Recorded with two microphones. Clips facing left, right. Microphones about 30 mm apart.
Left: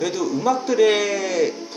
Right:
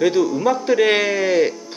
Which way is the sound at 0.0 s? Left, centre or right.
Right.